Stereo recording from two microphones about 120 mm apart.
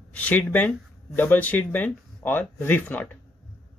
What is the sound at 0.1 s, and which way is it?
Speech, 10° left (ahead or behind).